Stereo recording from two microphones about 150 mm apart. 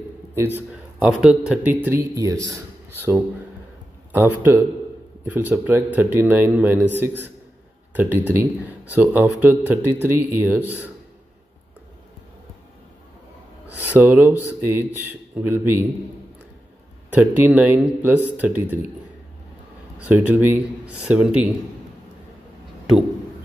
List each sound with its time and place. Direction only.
0.6 s speech: 5° right (ahead or behind)
1.7 s speech: 15° right (ahead or behind)
7.9 s speech: 15° right (ahead or behind)
13.9 s speech: 15° right (ahead or behind)
17.2 s speech: 10° right (ahead or behind)
20.1 s speech: 10° right (ahead or behind)